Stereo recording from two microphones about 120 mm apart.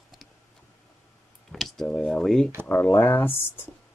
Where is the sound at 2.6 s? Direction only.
15° left (ahead or behind).